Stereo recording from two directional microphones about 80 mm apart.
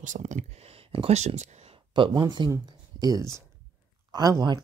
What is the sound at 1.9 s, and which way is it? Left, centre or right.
Speech, right.